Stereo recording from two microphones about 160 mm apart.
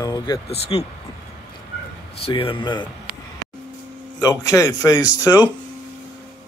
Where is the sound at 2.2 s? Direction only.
35° left (ahead or behind).